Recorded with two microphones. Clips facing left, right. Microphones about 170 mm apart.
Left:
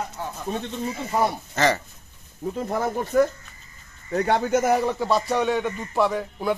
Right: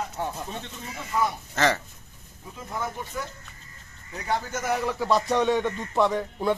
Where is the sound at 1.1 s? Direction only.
35° left (ahead or behind).